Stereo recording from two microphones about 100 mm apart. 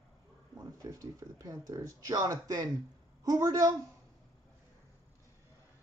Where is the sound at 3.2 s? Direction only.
40° right (ahead or behind).